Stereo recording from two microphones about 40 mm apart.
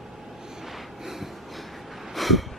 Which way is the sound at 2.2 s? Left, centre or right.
Centre.